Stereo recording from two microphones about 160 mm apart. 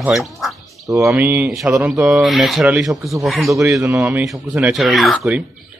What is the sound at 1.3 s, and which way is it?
Speech, centre (ahead or behind).